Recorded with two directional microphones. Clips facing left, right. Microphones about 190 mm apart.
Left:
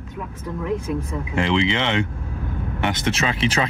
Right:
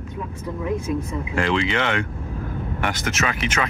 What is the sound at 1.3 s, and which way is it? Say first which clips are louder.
Speech: left 2 dB; 20° left (ahead or behind).